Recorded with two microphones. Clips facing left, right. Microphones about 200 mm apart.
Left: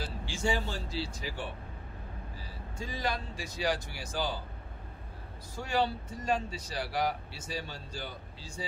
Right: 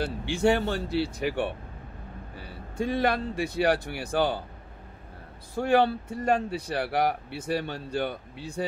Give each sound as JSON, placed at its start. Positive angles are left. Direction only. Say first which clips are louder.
{"t": 0.0, "sound": "speech", "louder": "right 10 dB", "side_deg": -60}
{"t": 5.6, "sound": "speech", "louder": "right 9 dB", "side_deg": -60}